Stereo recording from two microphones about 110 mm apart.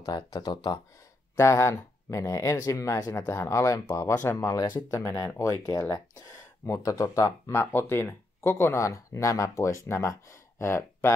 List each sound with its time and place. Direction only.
0.0 s speech: 35° left (ahead or behind)
1.3 s speech: 25° left (ahead or behind)